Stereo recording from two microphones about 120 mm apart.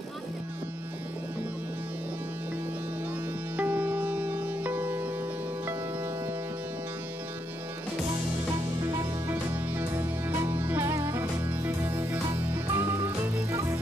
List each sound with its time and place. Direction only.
3.5 s music: 15° right (ahead or behind)
8.8 s music: 20° right (ahead or behind)